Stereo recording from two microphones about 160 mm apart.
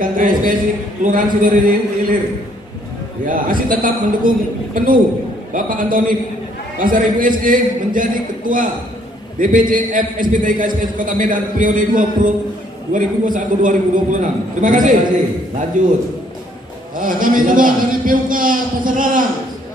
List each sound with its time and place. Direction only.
0.0 s a sound: 60° right (ahead or behind)
1.0 s a man's voice: 55° right (ahead or behind)
3.3 s a man's voice: 60° right (ahead or behind)